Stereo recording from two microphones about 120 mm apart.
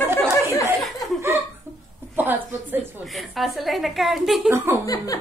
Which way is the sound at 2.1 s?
15° right (ahead or behind).